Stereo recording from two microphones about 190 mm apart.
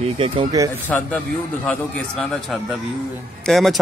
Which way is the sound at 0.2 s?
25° right (ahead or behind).